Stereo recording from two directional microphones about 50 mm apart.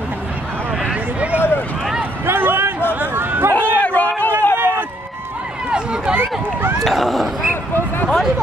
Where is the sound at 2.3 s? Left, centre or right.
Right.